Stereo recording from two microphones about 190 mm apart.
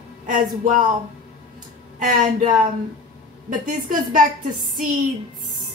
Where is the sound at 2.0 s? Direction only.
45° right (ahead or behind).